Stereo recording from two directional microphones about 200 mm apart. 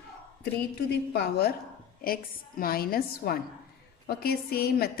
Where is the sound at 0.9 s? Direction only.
50° left (ahead or behind).